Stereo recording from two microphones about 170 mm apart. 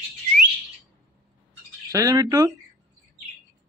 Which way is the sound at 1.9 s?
20° right (ahead or behind).